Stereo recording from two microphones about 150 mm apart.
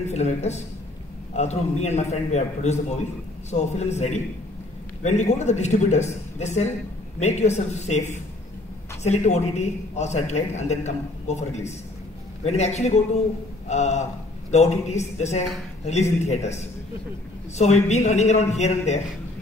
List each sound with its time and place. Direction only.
0.1 s a man's voice: 45° left (ahead or behind)